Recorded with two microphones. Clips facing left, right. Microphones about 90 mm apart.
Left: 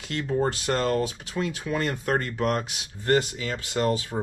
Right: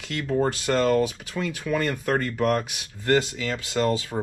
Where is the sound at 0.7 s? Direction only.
20° left (ahead or behind).